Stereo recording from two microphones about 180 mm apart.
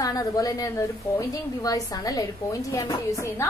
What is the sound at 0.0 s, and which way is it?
A woman's voice, 20° left (ahead or behind).